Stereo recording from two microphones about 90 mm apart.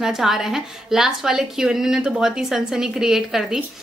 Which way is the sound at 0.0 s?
5° right (ahead or behind).